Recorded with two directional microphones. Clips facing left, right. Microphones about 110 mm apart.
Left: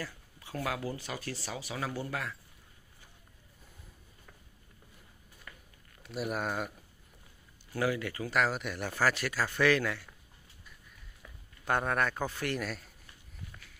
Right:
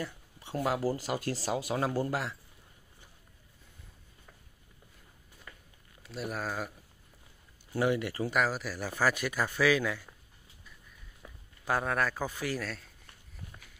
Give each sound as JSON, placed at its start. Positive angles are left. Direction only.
{"t": 0.0, "sound": "speech", "side_deg": -25}
{"t": 6.0, "sound": "speech", "side_deg": 5}
{"t": 7.7, "sound": "speech", "side_deg": -25}
{"t": 8.3, "sound": "speech", "side_deg": -5}
{"t": 11.2, "sound": "a sound", "side_deg": -30}
{"t": 11.6, "sound": "speech", "side_deg": 0}
{"t": 12.5, "sound": "speech", "side_deg": 5}